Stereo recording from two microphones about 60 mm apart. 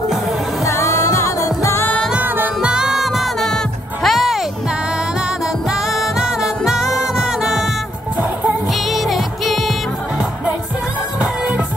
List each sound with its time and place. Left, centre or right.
0.7 s music: left
2.2 s music: right
2.6 s music: centre
3.3 s music: centre
5.7 s music: centre
8.9 s music: centre
11.1 s music: centre